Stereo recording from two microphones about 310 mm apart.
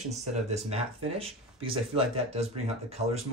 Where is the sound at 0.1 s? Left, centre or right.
Right.